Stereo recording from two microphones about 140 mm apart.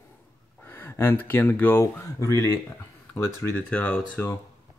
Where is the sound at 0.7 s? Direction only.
15° left (ahead or behind).